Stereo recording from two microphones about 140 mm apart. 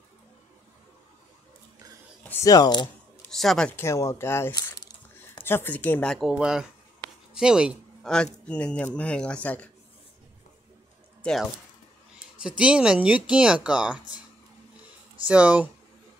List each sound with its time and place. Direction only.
2.2 s a sound: 15° left (ahead or behind)
2.5 s speech: 30° left (ahead or behind)
3.3 s speech: 5° left (ahead or behind)
3.8 s speech: 20° left (ahead or behind)
4.5 s a sound: 30° left (ahead or behind)
5.4 s speech: 15° left (ahead or behind)
6.1 s speech: 5° right (ahead or behind)
11.2 s speech: 10° left (ahead or behind)
12.4 s speech: 5° right (ahead or behind)
15.2 s speech: 10° right (ahead or behind)